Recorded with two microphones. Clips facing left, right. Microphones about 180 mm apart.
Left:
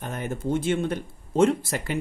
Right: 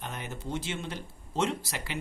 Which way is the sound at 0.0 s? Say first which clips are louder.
Left 9 dB; 50° left (ahead or behind).